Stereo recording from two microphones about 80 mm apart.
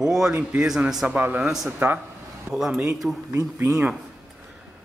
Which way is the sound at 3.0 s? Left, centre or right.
Centre.